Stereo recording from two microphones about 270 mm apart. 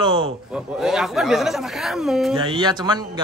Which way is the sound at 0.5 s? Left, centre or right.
Centre.